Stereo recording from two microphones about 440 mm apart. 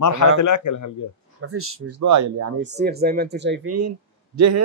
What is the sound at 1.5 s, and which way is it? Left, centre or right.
Speech, right.